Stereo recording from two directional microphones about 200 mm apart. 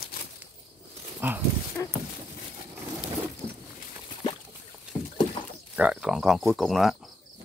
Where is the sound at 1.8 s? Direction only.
15° left (ahead or behind).